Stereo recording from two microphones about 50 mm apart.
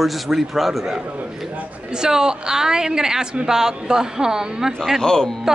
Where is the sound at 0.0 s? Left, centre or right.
Centre.